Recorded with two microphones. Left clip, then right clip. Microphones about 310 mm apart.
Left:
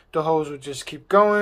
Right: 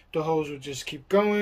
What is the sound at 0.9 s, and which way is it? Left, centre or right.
Speech, left.